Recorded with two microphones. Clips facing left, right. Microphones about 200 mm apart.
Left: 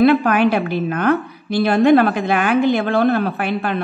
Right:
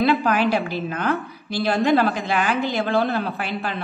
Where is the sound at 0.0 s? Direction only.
60° left (ahead or behind).